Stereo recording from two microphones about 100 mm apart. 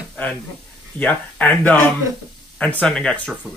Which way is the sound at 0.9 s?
15° left (ahead or behind).